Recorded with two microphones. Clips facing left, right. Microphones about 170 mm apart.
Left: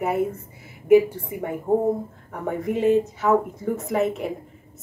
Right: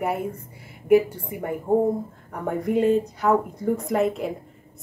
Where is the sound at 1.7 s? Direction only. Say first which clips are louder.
Right 1 dB; 10° right (ahead or behind).